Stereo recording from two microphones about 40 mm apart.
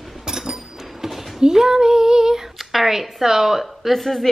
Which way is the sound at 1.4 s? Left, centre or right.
Centre.